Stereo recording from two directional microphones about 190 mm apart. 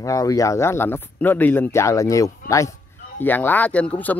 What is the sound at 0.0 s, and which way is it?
Speech, 15° left (ahead or behind).